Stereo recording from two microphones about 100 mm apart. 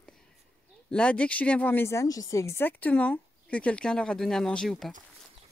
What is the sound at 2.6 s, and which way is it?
Speech, 15° left (ahead or behind).